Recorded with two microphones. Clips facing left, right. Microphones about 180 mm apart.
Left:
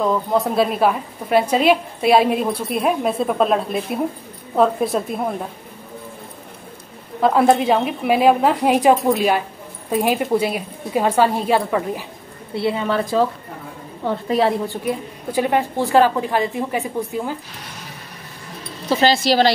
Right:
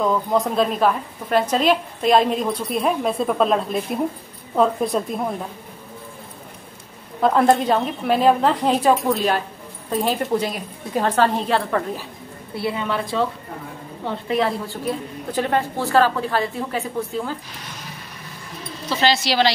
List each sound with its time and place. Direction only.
0.0 s a woman's voice: centre (ahead or behind)
7.2 s a woman's voice: 5° left (ahead or behind)
12.5 s a woman's voice: 25° left (ahead or behind)
12.8 s a woman's voice: 40° left (ahead or behind)
14.7 s a woman's voice: 10° left (ahead or behind)
18.9 s speech: 45° left (ahead or behind)